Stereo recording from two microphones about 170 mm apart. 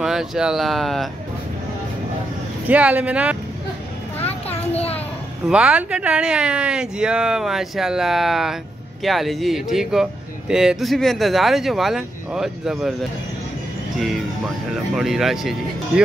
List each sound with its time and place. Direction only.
0.0 s speech: 5° right (ahead or behind)
2.7 s speech: 10° right (ahead or behind)
4.3 s a sound: 35° left (ahead or behind)
5.5 s speech: 5° right (ahead or behind)
13.9 s speech: centre (ahead or behind)